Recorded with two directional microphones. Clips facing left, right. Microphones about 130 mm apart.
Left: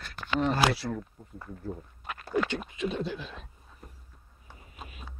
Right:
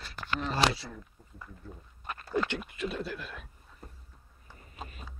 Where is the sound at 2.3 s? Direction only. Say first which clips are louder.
Left 2 dB; 10° left (ahead or behind).